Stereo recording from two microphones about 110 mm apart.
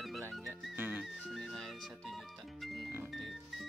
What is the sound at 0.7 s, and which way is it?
Speech, 15° right (ahead or behind).